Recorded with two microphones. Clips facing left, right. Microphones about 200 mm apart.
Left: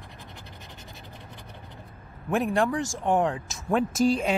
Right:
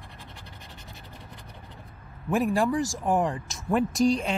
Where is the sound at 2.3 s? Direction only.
Centre (ahead or behind).